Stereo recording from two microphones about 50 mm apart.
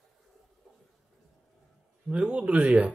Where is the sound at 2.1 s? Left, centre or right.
Right.